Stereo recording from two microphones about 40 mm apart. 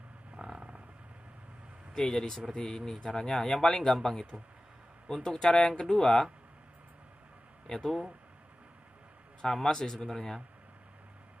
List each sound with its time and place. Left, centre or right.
0.4 s a sound: centre
2.0 s a man's voice: centre
7.6 s speech: centre
9.4 s a man's voice: centre